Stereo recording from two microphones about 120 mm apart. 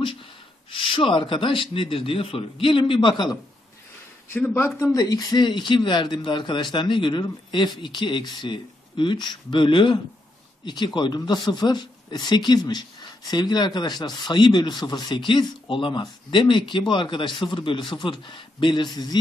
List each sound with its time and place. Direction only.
0.7 s speech: 45° left (ahead or behind)
4.3 s speech: 20° left (ahead or behind); by 19.1 s 35° left (ahead or behind)